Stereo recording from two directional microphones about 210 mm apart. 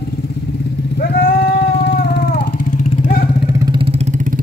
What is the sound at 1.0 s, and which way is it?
Vehicle, 45° left (ahead or behind).